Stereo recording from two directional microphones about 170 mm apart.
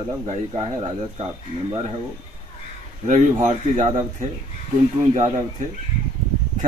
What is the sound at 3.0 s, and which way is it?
A man's voice, 45° right (ahead or behind).